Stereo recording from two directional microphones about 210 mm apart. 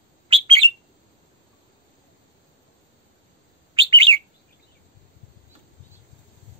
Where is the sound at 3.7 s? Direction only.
25° right (ahead or behind).